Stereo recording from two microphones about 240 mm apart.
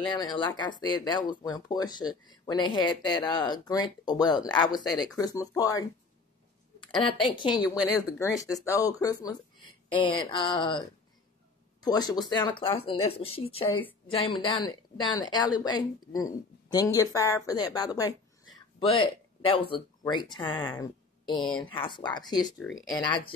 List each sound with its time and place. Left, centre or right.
0.1 s a woman's voice: centre
19.4 s a woman's voice: left